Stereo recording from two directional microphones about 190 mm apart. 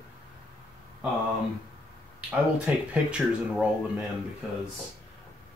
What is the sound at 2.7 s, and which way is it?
Speech, 5° right (ahead or behind).